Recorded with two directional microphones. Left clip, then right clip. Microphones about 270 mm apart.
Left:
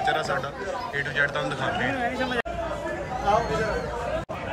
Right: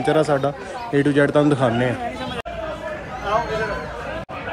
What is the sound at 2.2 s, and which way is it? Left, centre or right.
Chatter, left.